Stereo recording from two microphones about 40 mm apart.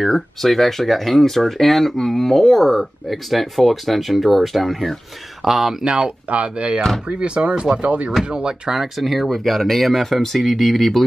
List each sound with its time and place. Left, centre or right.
0.0 s speech: centre
5.9 s speech: right
8.3 s speech: right
9.0 s speech: centre